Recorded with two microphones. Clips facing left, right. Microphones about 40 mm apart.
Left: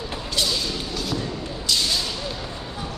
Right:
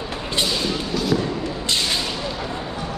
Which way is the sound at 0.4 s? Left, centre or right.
Right.